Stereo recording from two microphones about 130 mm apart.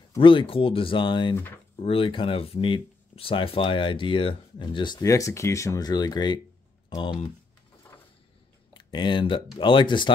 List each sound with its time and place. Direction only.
0.2 s speech: 40° left (ahead or behind)
8.7 s speech: 35° left (ahead or behind)